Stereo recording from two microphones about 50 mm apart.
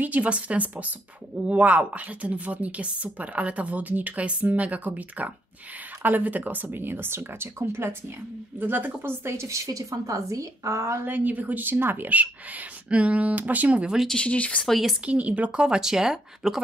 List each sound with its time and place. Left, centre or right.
0.0 s a woman's voice: right
8.5 s speech: right
9.2 s a woman's voice: right
11.1 s speech: right
11.7 s speech: right
12.1 s speech: right
14.0 s speech: centre
15.0 s a woman's voice: right
15.6 s speech: centre